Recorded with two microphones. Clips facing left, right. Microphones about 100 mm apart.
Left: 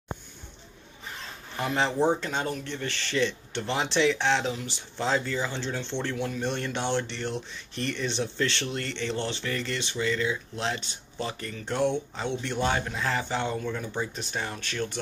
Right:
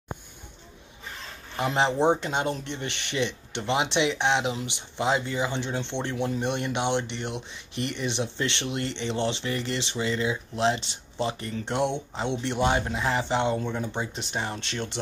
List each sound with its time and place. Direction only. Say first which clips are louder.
1.6 s speech: right 2 dB; 20° right (ahead or behind)